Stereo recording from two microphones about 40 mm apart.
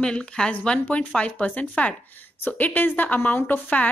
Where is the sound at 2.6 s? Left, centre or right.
Left.